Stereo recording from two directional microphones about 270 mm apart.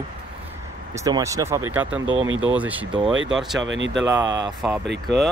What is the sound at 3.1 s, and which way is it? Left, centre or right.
Speech, right.